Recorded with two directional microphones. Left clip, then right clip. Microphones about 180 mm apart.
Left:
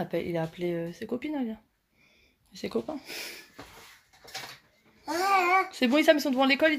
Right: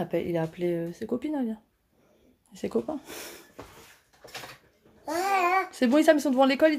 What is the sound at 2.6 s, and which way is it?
Speech, 10° right (ahead or behind).